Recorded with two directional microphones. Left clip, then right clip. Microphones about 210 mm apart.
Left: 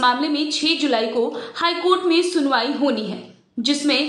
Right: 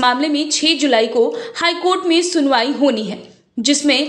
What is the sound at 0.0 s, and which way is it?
A woman's voice, 30° right (ahead or behind).